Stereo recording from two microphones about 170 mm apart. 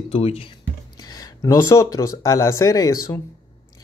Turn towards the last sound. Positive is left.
turn(degrees=20)  # may be behind; listen again after turning